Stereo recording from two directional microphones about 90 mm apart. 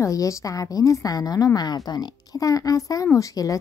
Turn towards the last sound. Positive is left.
turn(degrees=40)  # may be behind; listen again after turning